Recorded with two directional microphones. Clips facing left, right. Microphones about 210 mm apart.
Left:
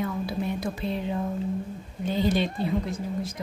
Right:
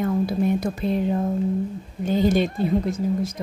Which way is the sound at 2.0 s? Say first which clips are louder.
Right 5 dB; 45° right (ahead or behind).